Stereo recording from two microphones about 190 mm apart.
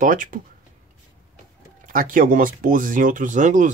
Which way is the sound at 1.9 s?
45° right (ahead or behind).